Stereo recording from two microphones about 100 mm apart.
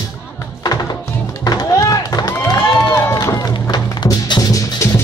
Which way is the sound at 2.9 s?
35° left (ahead or behind).